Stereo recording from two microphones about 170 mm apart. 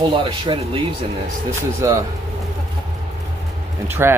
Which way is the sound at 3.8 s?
10° right (ahead or behind).